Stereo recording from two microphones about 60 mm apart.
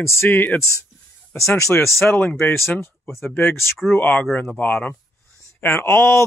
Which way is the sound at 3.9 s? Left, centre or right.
Left.